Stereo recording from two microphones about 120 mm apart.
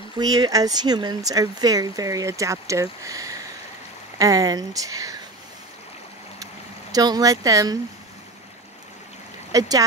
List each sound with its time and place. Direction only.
0.2 s speech: 30° right (ahead or behind)
6.4 s speech: 30° right (ahead or behind)
9.5 s speech: 30° right (ahead or behind)